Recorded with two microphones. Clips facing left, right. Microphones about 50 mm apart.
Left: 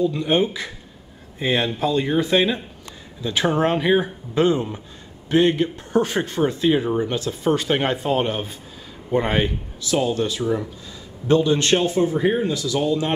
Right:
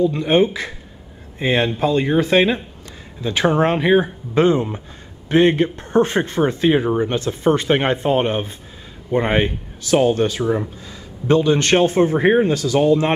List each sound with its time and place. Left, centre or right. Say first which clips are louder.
0.0 s a man's voice: right 4 dB; right
1.4 s a man's voice: right 3 dB; right
9.8 s a man's voice: right 6 dB; right